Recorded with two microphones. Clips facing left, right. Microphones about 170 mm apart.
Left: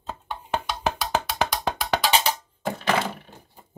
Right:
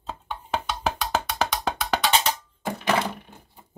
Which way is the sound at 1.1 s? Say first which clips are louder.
Left 1 dB; centre (ahead or behind).